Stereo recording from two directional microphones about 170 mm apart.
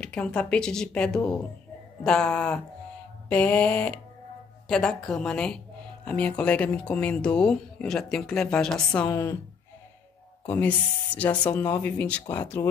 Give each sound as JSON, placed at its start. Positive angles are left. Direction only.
{"t": 0.0, "sound": "speech", "side_deg": 5}
{"t": 9.0, "sound": "speech", "side_deg": 15}
{"t": 10.4, "sound": "speech", "side_deg": 10}